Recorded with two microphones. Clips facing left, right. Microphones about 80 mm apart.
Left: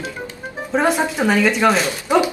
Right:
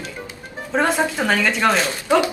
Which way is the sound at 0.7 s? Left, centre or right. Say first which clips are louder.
Left 1 dB; centre.